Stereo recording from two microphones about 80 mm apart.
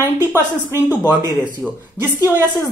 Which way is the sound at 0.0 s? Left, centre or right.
Right.